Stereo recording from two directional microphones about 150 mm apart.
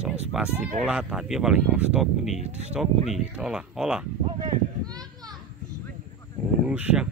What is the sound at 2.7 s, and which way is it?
Speech, 5° right (ahead or behind).